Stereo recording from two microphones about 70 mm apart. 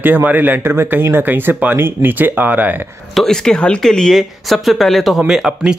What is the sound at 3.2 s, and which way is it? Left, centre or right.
Speech, centre.